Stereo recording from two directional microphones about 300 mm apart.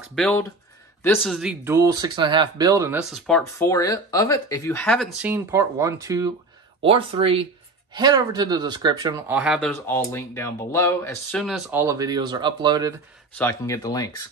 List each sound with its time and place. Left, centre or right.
0.1 s speech: centre
9.4 s speech: centre
13.4 s speech: centre